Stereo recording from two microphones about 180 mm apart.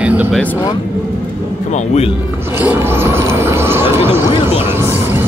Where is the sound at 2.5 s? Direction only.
10° right (ahead or behind).